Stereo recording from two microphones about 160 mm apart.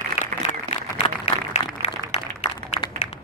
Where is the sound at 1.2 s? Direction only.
45° left (ahead or behind).